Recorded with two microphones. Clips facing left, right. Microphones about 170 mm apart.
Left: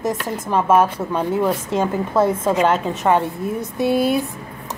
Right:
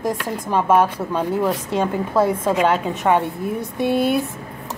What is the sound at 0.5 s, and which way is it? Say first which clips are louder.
Speech: left 1 dB; 5° left (ahead or behind).